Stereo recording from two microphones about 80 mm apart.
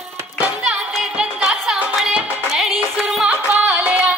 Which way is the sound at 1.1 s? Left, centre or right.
Centre.